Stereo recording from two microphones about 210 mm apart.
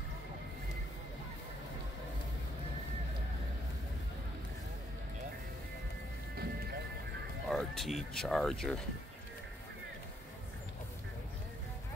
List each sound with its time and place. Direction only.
6.3 s music: 50° right (ahead or behind)
7.4 s speech: centre (ahead or behind)